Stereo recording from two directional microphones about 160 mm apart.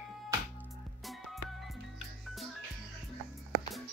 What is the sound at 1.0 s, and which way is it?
Music, centre (ahead or behind).